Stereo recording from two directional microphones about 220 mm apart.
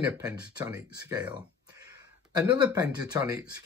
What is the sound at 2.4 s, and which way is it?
Speech, 15° right (ahead or behind).